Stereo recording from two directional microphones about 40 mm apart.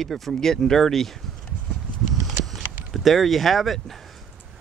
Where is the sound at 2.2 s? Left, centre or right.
Centre.